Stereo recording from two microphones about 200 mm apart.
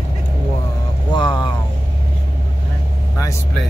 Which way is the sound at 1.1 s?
20° left (ahead or behind).